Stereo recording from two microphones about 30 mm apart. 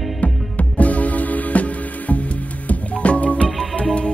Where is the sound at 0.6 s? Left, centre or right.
Left.